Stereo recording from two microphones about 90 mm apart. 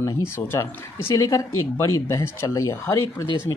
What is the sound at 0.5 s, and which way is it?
Speech, 30° left (ahead or behind).